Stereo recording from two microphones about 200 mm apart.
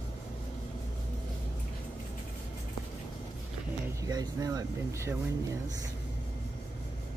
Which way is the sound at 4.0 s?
20° right (ahead or behind).